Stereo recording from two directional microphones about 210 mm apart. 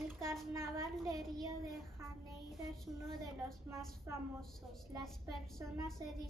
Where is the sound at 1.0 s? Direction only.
15° right (ahead or behind).